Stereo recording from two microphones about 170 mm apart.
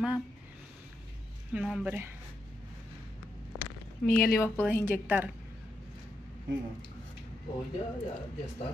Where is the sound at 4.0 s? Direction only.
10° left (ahead or behind).